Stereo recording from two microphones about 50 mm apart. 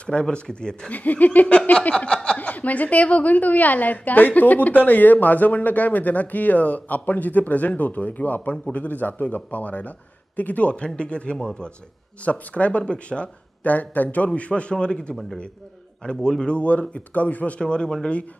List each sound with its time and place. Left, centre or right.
0.0 s speech: left
0.9 s a woman's voice: left; by 11.7 s centre
12.3 s speech: left
13.7 s speech: left; by 17.9 s centre